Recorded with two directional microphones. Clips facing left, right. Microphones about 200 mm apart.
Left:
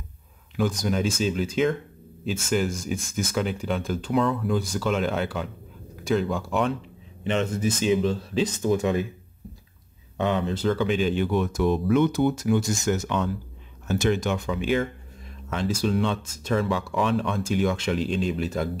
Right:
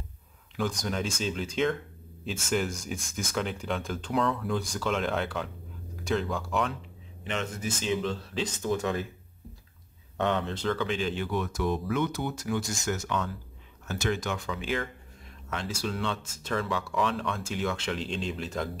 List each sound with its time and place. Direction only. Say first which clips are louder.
0.6 s speech: left 6 dB; 5° left (ahead or behind)
7.2 s speech: left 8 dB; 25° left (ahead or behind)
7.8 s speech: left 6 dB; 10° left (ahead or behind)
10.1 s speech: left 4 dB; centre (ahead or behind)